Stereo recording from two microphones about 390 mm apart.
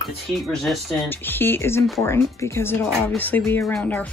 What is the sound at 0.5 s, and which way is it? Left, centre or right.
Speech, centre.